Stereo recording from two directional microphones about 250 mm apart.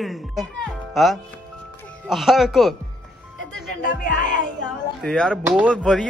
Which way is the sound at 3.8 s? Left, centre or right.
Left.